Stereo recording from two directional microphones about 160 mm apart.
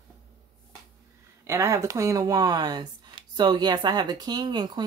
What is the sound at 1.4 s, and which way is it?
Speech, 20° right (ahead or behind).